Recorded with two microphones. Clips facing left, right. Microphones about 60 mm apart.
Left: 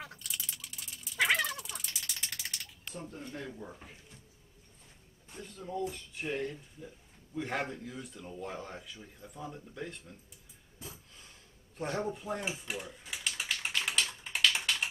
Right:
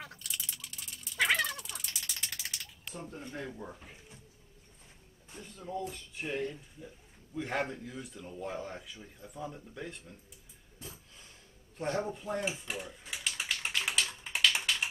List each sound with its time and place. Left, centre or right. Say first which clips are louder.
0.0 s rattle: even; centre
3.1 s speech: right 2 dB; centre
5.3 s speech: even; centre
11.8 s typing: right 1 dB; centre